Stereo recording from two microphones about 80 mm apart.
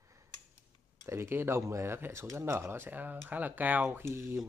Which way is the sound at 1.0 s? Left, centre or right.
Right.